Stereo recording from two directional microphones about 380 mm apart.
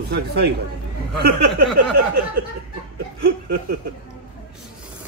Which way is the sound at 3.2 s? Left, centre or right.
Right.